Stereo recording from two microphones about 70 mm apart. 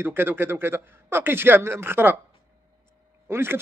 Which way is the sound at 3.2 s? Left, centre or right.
Right.